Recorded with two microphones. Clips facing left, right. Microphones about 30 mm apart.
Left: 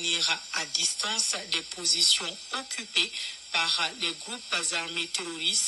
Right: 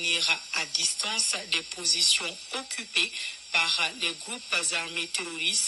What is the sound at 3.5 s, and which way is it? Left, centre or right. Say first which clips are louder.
Speech: right 2 dB; right.